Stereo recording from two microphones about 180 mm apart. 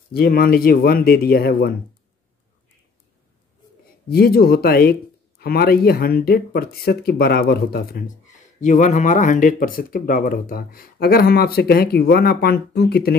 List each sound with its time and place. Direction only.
0.1 s speech: 55° left (ahead or behind)
4.1 s speech: 55° left (ahead or behind)
8.5 s speech: 45° left (ahead or behind); by 13.2 s 60° left (ahead or behind)